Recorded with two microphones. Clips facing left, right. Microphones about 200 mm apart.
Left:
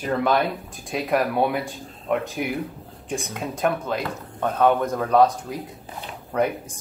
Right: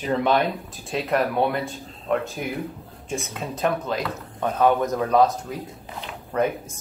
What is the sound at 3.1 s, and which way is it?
Speech, 10° left (ahead or behind).